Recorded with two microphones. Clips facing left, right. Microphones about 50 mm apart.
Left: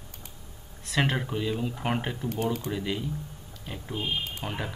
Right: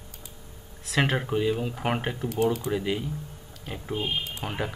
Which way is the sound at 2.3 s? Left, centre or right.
Right.